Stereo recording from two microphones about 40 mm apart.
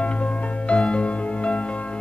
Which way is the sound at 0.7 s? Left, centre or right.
Left.